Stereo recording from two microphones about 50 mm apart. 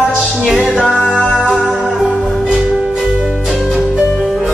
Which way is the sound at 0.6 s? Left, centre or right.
Left.